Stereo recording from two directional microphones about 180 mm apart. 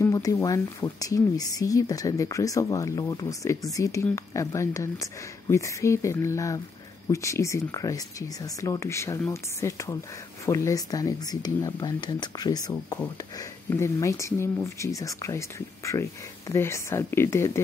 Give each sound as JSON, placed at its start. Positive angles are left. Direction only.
{"t": 0.0, "sound": "speech", "side_deg": 20}